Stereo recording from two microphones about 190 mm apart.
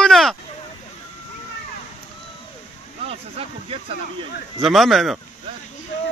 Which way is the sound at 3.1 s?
30° right (ahead or behind).